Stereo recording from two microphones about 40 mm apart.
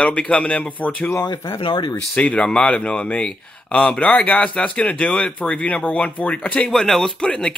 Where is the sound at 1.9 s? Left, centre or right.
Left.